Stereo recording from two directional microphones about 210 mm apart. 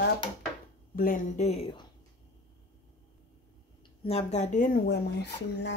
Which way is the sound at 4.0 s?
30° left (ahead or behind).